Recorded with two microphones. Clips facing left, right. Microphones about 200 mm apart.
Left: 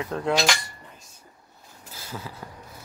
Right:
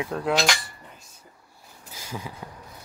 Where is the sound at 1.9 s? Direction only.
15° right (ahead or behind).